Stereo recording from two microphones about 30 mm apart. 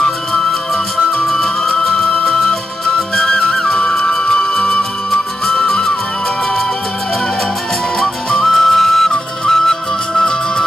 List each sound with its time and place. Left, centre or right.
0.3 s music: centre
3.2 s flute: centre
3.7 s music: left
5.1 s music: centre
8.0 s music: centre
8.5 s flute: centre
9.5 s music: centre